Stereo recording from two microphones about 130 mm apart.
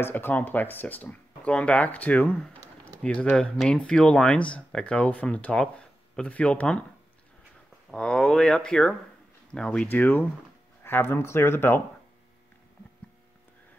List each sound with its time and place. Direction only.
0.0 s speech: 15° left (ahead or behind)
7.9 s speech: 5° left (ahead or behind)